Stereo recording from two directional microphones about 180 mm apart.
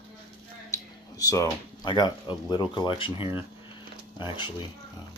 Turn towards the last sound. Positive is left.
turn(degrees=25)  # may be behind; listen again after turning